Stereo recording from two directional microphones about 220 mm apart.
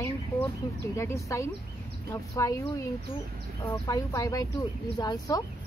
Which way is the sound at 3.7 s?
15° left (ahead or behind).